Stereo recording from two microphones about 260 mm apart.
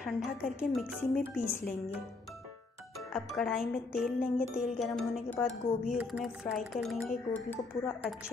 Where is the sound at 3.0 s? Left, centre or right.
Centre.